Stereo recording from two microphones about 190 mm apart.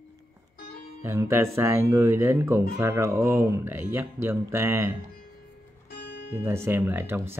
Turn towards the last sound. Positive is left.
turn(degrees=-10)  # may be behind; listen again after turning